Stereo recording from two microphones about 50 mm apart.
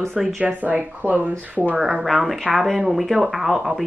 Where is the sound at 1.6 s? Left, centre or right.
Centre.